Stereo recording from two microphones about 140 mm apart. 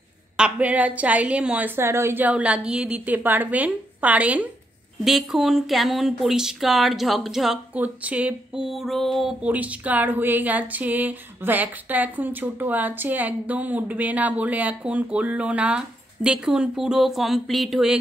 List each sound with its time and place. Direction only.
0.4 s speech: 10° right (ahead or behind)
9.4 s speech: 10° right (ahead or behind)